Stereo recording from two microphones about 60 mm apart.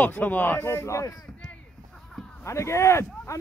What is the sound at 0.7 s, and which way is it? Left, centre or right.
Speech, left.